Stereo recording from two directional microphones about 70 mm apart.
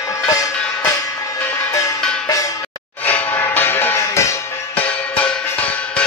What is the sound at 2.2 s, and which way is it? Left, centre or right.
Cowbell, left.